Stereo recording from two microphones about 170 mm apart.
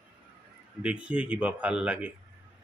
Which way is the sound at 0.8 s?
5° right (ahead or behind).